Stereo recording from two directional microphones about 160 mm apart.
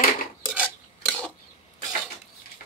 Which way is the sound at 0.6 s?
5° left (ahead or behind).